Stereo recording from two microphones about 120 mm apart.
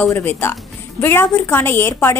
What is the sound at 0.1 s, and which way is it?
A woman's voice, 15° left (ahead or behind).